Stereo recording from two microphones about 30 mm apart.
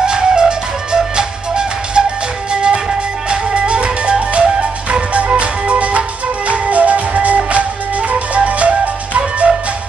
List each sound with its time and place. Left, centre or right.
0.0 s music: right
3.3 s music: right